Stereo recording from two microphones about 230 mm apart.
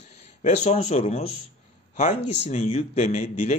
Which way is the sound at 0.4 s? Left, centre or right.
Left.